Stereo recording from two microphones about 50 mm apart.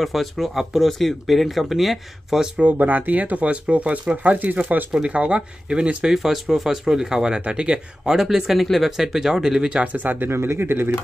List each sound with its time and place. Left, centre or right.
0.0 s speech: centre
2.6 s speech: right
4.9 s speech: right
6.0 s speech: centre
9.9 s speech: right
10.3 s speech: right